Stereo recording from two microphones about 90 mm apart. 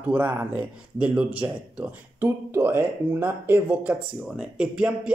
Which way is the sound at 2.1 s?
25° right (ahead or behind).